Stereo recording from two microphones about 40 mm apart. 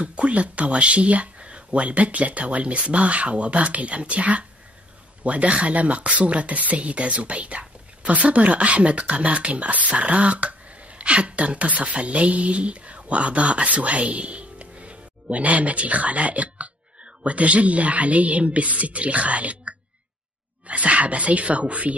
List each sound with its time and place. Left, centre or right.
0.0 s speech: right